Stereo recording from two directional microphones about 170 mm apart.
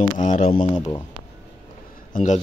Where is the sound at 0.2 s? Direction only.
50° left (ahead or behind).